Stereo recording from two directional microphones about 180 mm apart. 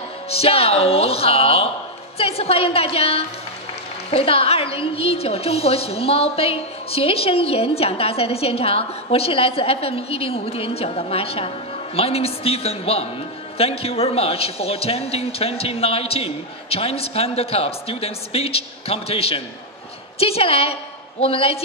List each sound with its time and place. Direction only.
0.3 s a woman's voice: 35° left (ahead or behind)